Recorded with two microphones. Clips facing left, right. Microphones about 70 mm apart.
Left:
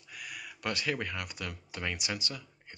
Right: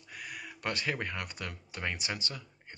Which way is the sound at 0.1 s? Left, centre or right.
Right.